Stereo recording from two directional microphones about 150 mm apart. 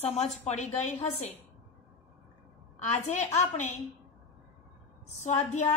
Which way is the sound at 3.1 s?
50° left (ahead or behind).